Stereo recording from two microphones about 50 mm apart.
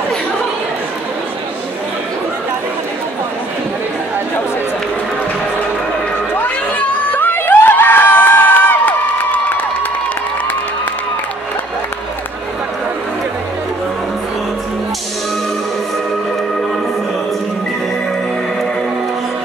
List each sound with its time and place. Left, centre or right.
7.1 s crowd: left